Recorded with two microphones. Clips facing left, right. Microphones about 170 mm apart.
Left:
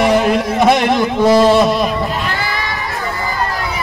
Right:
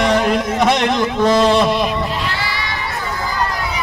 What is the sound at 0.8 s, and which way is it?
Speech, 10° left (ahead or behind).